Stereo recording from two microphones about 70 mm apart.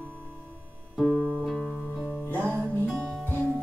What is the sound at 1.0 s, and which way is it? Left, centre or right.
Music, centre.